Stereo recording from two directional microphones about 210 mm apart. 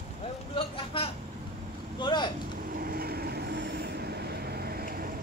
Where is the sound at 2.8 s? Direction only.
45° right (ahead or behind).